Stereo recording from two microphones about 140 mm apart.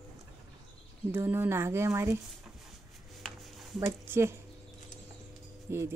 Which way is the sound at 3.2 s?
Centre (ahead or behind).